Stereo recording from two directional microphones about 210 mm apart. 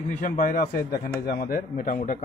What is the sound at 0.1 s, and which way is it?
Speech, 40° left (ahead or behind).